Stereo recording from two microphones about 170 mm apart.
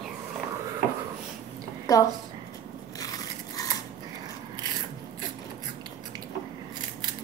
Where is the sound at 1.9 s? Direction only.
20° left (ahead or behind).